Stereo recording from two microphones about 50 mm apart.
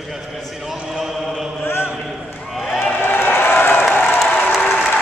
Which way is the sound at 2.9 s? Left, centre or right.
Left.